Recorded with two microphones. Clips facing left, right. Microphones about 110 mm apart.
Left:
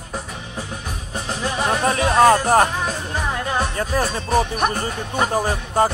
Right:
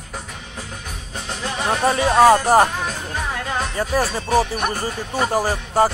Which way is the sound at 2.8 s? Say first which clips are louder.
Left 2 dB; 40° left (ahead or behind).